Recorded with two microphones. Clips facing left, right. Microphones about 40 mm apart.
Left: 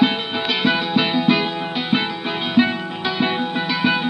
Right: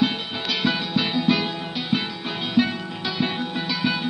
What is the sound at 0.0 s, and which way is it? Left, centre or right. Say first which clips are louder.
Music: left 5 dB; left.